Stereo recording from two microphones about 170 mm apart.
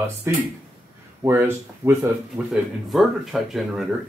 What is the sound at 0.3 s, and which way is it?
Speech, 15° right (ahead or behind).